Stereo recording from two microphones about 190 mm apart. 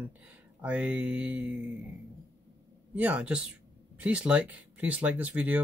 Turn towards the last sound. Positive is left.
turn(degrees=-10)  # may be behind; listen again after turning